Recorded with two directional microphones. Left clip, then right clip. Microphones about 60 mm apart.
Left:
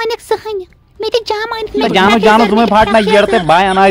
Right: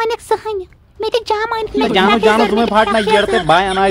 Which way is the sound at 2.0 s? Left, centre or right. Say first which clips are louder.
Left 4 dB; left.